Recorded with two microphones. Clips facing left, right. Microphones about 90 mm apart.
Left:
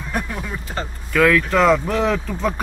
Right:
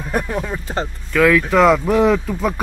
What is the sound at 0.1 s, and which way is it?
Speech, 30° right (ahead or behind).